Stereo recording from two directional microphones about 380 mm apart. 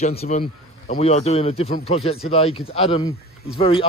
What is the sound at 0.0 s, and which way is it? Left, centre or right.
Speech, centre.